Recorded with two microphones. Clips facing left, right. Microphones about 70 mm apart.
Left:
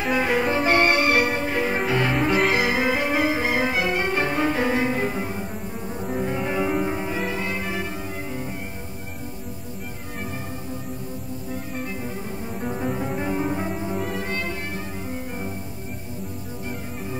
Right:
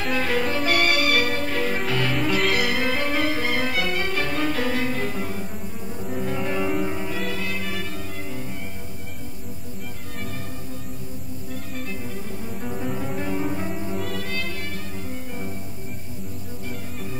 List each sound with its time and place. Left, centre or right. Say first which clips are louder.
0.0 s music: left 2 dB; centre
12.6 s music: left 3 dB; centre